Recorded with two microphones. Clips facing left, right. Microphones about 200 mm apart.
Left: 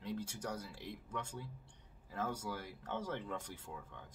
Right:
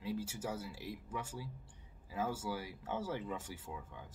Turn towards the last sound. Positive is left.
turn(degrees=-5)  # may be behind; listen again after turning